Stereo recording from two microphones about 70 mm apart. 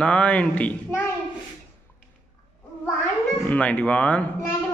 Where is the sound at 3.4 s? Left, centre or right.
Left.